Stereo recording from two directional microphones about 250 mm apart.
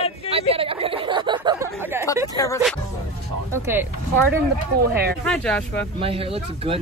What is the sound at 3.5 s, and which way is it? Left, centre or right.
Speech, centre.